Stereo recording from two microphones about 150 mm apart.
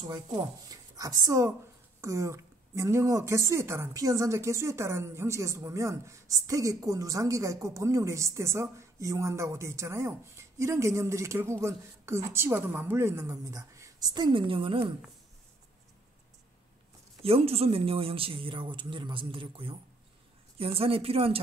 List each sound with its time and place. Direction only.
0.0 s a woman's voice: 25° right (ahead or behind)
17.2 s speech: 40° right (ahead or behind)